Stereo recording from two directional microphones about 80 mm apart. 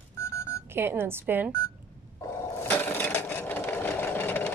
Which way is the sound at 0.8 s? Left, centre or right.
Right.